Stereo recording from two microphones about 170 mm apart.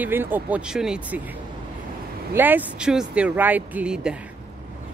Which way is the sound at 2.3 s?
10° right (ahead or behind).